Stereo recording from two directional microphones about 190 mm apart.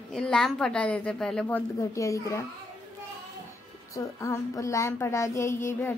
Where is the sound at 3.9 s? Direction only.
15° left (ahead or behind).